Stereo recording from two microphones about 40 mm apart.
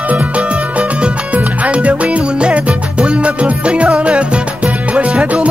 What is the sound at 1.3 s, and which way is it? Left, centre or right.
Music, right.